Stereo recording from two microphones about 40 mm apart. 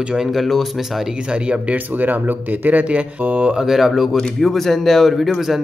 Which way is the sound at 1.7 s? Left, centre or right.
Right.